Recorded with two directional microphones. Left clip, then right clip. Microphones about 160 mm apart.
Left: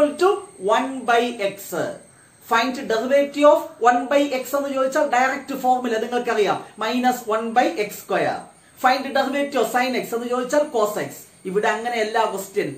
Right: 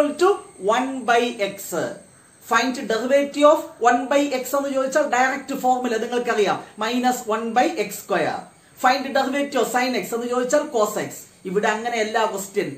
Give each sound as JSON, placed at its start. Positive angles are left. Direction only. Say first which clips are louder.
{"t": 0.2, "sound": "speech", "louder": "even", "side_deg": -20}